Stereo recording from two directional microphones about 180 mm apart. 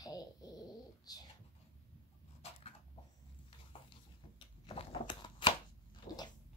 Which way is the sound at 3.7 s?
30° left (ahead or behind).